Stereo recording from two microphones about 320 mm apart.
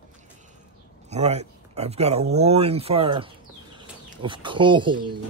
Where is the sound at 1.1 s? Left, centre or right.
Right.